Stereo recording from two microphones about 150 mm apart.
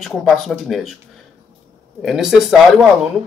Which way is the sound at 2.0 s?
Centre (ahead or behind).